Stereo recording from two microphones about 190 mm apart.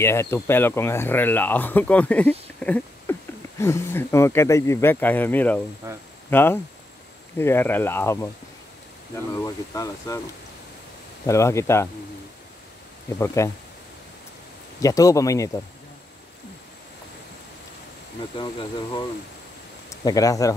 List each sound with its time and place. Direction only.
0.0 s speech: 15° left (ahead or behind)
5.8 s speech: 15° right (ahead or behind)
6.3 s speech: 10° left (ahead or behind)
9.3 s speech: 15° left (ahead or behind)
11.2 s speech: 15° left (ahead or behind)
13.2 s speech: 15° left (ahead or behind)
14.8 s speech: 20° left (ahead or behind)
18.3 s speech: 25° left (ahead or behind)